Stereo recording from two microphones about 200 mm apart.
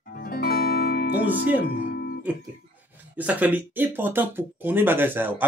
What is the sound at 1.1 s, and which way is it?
Speech, 10° right (ahead or behind).